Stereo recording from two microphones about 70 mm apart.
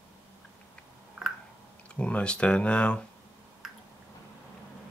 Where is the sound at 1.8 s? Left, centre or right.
Centre.